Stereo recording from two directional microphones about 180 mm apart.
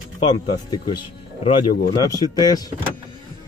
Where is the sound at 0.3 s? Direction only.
25° left (ahead or behind).